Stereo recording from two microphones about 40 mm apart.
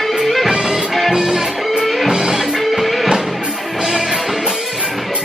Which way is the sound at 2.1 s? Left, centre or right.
Centre.